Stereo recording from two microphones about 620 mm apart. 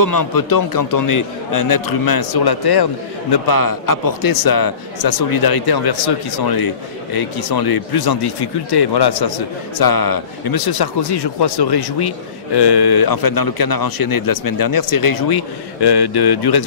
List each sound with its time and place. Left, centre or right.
0.0 s a man's voice: left